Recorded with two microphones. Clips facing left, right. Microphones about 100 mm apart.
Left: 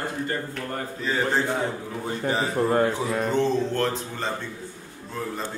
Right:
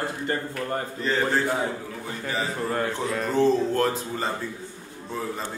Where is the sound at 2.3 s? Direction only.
25° left (ahead or behind).